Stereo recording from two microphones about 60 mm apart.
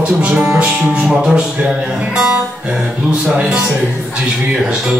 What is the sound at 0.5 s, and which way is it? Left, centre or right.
Music, centre.